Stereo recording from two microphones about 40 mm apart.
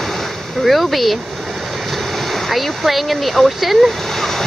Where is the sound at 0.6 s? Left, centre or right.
Centre.